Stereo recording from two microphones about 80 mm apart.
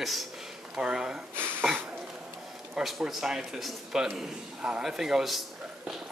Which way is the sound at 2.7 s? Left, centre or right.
Centre.